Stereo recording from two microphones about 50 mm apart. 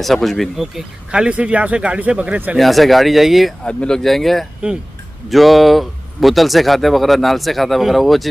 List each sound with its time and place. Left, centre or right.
0.0 s speech: centre
1.1 s speech: right
2.5 s speech: centre
3.6 s speech: centre
4.0 s speech: centre